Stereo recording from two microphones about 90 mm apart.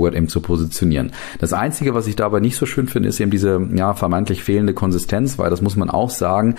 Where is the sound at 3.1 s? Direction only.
60° right (ahead or behind).